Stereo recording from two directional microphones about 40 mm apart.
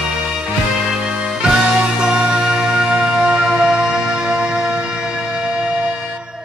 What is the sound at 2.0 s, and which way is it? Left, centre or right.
Music, right.